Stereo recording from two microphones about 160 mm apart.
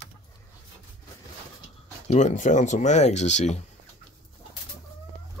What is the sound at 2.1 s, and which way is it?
Speech, 50° left (ahead or behind).